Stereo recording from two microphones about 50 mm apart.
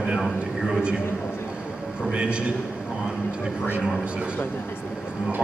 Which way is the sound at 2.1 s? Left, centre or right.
Right.